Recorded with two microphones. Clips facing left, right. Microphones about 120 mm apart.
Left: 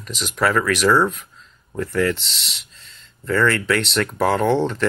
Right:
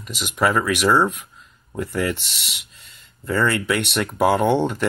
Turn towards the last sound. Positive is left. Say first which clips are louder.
# even
turn(degrees=-10)  # may be behind; listen again after turning